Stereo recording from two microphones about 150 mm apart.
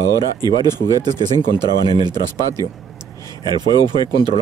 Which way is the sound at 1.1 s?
30° right (ahead or behind).